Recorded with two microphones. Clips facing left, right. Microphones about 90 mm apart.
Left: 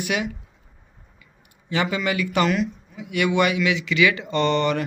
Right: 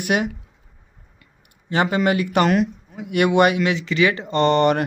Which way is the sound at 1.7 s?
45° right (ahead or behind).